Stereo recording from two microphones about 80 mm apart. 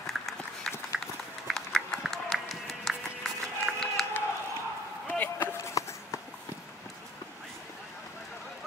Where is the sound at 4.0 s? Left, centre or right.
Centre.